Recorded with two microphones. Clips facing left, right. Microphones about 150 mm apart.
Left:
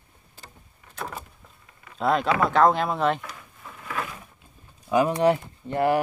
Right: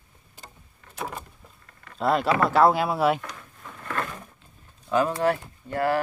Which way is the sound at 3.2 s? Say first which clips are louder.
Right 1 dB; 5° left (ahead or behind).